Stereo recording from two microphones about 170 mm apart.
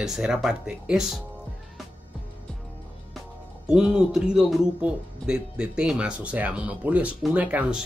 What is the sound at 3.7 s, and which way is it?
Speech, 5° right (ahead or behind).